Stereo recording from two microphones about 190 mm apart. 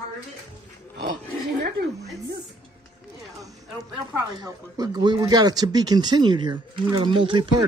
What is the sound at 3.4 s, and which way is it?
Speech, 20° right (ahead or behind).